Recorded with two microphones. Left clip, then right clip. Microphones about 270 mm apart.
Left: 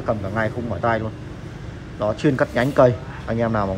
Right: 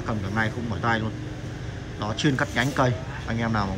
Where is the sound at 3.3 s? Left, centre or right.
Left.